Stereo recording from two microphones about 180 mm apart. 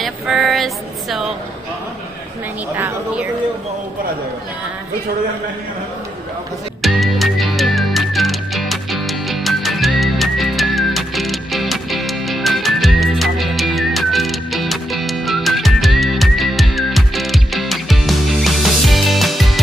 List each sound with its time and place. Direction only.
0.0 s a sound: centre (ahead or behind)
2.7 s a woman's voice: 10° right (ahead or behind)
6.8 s music: centre (ahead or behind)